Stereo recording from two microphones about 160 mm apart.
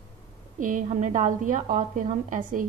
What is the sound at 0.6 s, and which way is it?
Speech, 55° right (ahead or behind).